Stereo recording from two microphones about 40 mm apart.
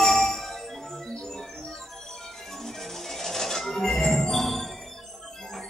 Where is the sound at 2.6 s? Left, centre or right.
Centre.